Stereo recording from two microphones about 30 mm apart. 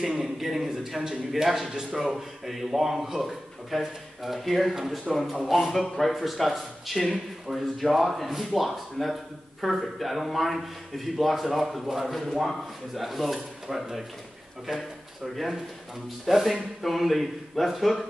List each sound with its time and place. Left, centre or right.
0.0 s a man's voice: centre
0.4 s a man's voice: centre
15.2 s speech: centre